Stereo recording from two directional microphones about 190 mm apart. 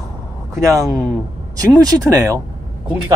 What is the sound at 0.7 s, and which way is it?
Speech, 20° right (ahead or behind).